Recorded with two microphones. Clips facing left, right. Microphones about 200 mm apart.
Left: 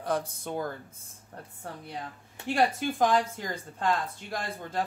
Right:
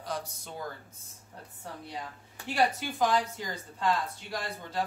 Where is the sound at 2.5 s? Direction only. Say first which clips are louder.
Left 2 dB; 50° left (ahead or behind).